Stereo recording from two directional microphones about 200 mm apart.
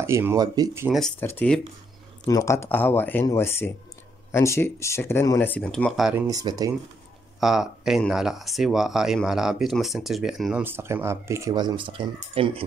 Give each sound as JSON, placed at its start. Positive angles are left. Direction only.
{"t": 0.0, "sound": "speech", "side_deg": -10}
{"t": 0.8, "sound": "speech", "side_deg": 0}
{"t": 6.2, "sound": "speech", "side_deg": -20}
{"t": 7.3, "sound": "speech", "side_deg": 0}